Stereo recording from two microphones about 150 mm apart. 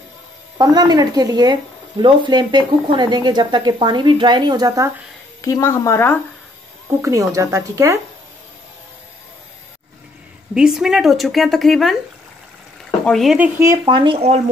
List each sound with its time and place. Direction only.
0.6 s speech: 25° right (ahead or behind)
5.4 s speech: 20° left (ahead or behind)
7.0 s speech: 20° right (ahead or behind)
10.5 s speech: 5° right (ahead or behind)
13.0 s speech: centre (ahead or behind)
13.8 s speech: 35° right (ahead or behind)